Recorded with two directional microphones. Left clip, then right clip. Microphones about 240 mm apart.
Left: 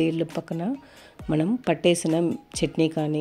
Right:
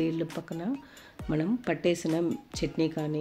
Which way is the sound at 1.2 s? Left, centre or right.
Left.